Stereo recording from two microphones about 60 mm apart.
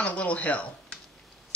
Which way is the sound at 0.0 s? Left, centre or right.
Left.